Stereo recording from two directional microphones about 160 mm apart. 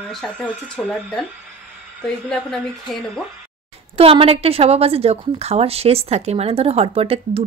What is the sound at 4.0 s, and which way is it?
A woman's voice, 35° right (ahead or behind).